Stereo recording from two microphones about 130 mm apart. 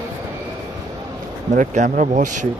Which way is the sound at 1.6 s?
75° right (ahead or behind).